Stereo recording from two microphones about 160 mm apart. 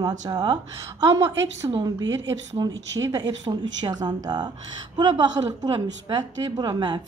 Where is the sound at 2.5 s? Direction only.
20° right (ahead or behind).